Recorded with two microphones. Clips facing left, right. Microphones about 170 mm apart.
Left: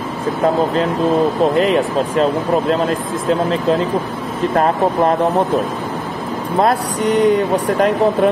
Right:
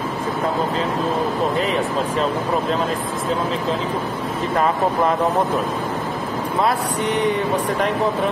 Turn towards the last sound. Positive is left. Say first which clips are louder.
# left 6 dB
turn(degrees=40)  # may be behind; listen again after turning